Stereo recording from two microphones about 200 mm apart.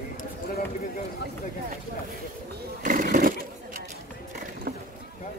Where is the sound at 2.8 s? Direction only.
40° right (ahead or behind).